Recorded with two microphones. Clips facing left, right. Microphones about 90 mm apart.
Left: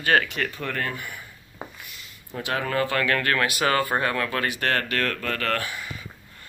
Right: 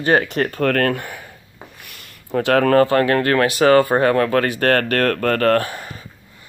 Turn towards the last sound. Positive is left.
turn(degrees=-40)  # may be behind; listen again after turning